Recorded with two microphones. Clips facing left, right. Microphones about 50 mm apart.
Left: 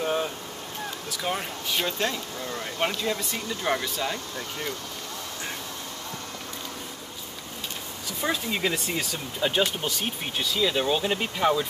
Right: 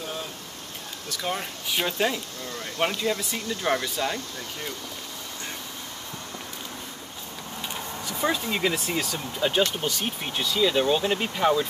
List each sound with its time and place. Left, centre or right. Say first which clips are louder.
0.0 s a sound: left 8 dB; left
1.1 s speech: even; centre
1.7 s speech: right 2 dB; centre
2.4 s speech: right 1 dB; centre
8.1 s speech: right 2 dB; centre